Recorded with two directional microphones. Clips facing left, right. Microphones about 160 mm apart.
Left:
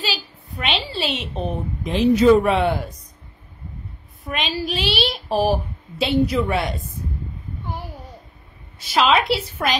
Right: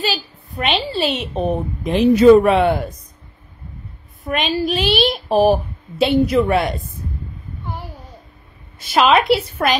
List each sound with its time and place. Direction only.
0.6 s a child's voice: 45° right (ahead or behind)
1.9 s a woman's voice: 60° right (ahead or behind)
4.3 s a child's voice: 50° right (ahead or behind)
8.7 s a woman's voice: 55° right (ahead or behind)